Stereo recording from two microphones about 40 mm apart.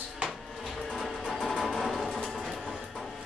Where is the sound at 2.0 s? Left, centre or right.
Centre.